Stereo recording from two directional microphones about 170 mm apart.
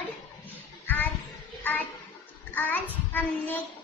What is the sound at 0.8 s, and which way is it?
Child singing, 10° left (ahead or behind).